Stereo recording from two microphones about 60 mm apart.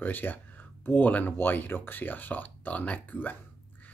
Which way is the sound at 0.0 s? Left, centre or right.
Left.